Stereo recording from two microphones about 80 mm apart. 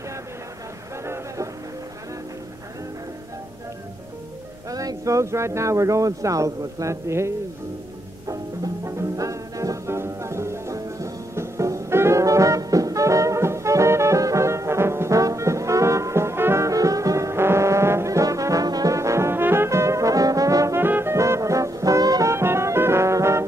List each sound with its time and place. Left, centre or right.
1.0 s a sound: right
4.6 s speech: right
8.8 s music: right
16.6 s music: right
20.8 s brass instrument: right
22.3 s music: right